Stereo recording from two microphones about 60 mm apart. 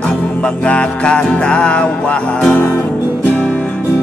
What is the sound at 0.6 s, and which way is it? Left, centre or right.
Music, centre.